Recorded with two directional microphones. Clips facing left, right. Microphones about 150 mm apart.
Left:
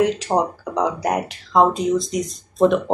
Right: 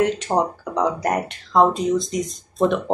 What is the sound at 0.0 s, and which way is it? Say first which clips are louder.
Speech: left 1 dB; centre (ahead or behind).